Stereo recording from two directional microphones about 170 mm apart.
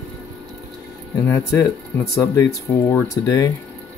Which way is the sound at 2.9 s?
20° left (ahead or behind).